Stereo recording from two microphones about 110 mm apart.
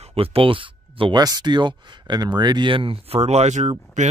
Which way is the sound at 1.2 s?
40° right (ahead or behind).